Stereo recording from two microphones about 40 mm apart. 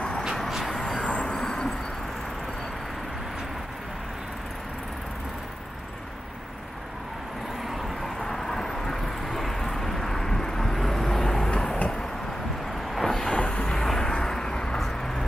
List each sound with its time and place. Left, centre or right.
0.7 s vehicle: centre
0.9 s vehicle: left
8.0 s vehicle: centre
12.9 s vehicle: centre
13.3 s a sound: left
13.7 s vehicle: centre
14.8 s vehicle: centre